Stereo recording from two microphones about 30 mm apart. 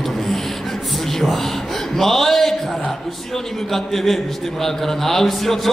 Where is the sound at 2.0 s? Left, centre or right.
Centre.